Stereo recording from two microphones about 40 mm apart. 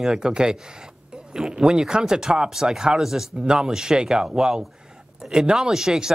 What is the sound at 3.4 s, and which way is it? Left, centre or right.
Speech, centre.